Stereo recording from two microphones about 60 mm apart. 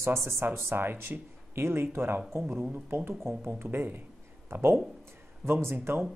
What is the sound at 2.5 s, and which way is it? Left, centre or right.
Speech, right.